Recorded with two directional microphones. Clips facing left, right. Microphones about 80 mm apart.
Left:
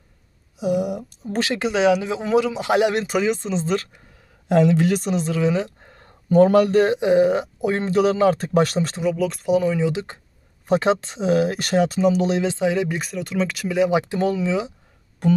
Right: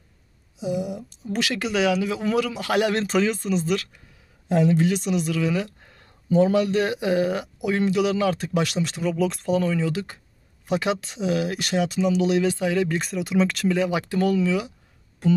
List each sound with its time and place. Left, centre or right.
0.6 s a sound: left
1.2 s speech: left
1.5 s speech: left
4.5 s a woman's voice: left
4.8 s speech: left
6.2 s speech: left
6.8 s speech: left
9.1 s speech: centre
9.5 s speech: centre
10.7 s speech: left; by 13.0 s centre
13.0 s speech: centre
13.7 s speech: left
15.2 s music: left